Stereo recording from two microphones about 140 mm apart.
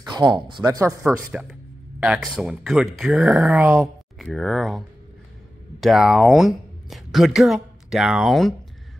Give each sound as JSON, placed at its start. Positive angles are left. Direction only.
{"t": 0.0, "sound": "speech", "side_deg": -30}
{"t": 1.0, "sound": "speech", "side_deg": -5}
{"t": 3.8, "sound": "speech", "side_deg": 0}